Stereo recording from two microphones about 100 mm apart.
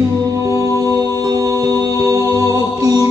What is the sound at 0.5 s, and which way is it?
Music, 35° right (ahead or behind).